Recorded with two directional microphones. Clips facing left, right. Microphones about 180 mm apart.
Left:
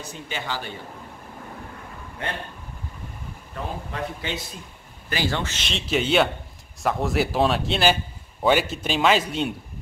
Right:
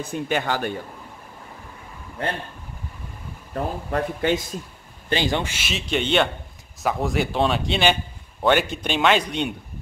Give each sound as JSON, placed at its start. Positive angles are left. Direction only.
{"t": 0.0, "sound": "speech", "side_deg": -55}
{"t": 2.2, "sound": "speech", "side_deg": -35}
{"t": 3.5, "sound": "speech", "side_deg": -50}
{"t": 5.1, "sound": "a man's voice", "side_deg": -15}